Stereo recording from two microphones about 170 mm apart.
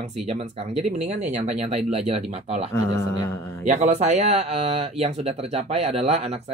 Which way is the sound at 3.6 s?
45° right (ahead or behind).